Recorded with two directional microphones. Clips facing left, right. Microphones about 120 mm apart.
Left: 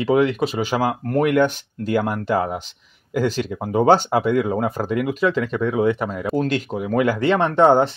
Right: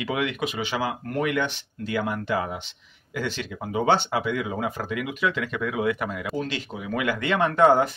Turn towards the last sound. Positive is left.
turn(degrees=30)  # may be behind; listen again after turning